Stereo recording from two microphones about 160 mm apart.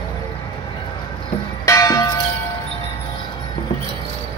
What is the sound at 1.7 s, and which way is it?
Church bell, 20° left (ahead or behind).